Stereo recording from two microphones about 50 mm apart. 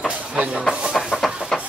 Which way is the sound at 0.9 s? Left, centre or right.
Centre.